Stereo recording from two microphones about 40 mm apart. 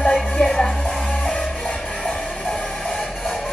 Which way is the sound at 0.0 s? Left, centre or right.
Left.